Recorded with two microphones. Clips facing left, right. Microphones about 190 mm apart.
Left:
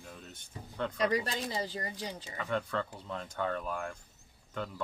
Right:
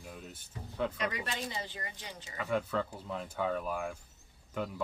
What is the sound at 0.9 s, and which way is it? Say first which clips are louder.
Speech: left 6 dB; 35° left (ahead or behind).